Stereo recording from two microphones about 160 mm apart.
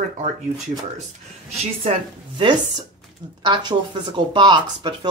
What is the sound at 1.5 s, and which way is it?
A woman's voice, 35° right (ahead or behind).